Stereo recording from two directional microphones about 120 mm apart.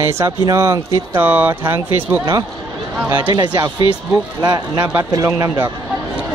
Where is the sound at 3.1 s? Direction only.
40° right (ahead or behind).